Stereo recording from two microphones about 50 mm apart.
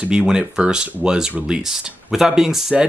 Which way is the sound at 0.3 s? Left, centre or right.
Centre.